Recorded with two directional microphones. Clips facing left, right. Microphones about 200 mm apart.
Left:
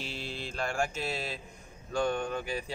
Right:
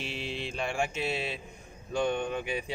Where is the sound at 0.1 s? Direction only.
70° right (ahead or behind).